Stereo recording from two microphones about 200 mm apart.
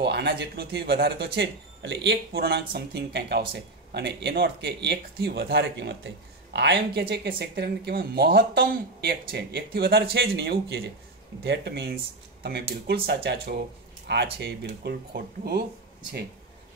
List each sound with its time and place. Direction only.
0.0 s speech: 55° right (ahead or behind)